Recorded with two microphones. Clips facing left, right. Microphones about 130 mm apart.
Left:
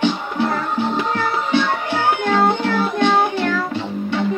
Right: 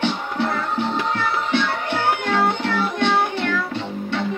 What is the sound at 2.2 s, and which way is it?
Music, 45° left (ahead or behind).